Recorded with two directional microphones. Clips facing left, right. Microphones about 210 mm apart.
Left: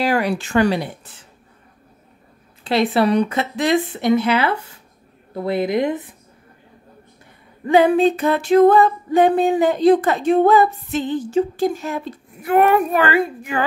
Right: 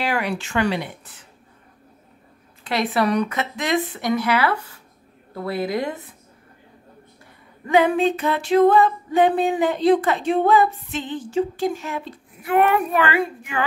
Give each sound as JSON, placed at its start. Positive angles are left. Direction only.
{"t": 0.0, "sound": "music", "side_deg": 40}
{"t": 2.6, "sound": "speech", "side_deg": 30}
{"t": 7.6, "sound": "music", "side_deg": 35}